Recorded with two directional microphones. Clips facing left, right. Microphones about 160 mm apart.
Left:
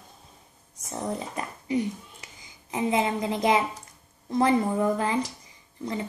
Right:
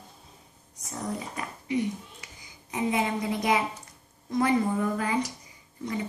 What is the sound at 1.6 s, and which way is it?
A woman's voice, 30° left (ahead or behind).